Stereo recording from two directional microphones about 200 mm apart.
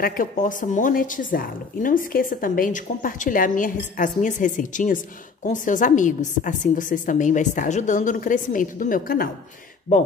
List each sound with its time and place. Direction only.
0.0 s speech: 40° left (ahead or behind)